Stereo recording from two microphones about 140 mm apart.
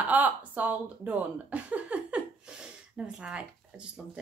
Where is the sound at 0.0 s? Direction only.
10° right (ahead or behind).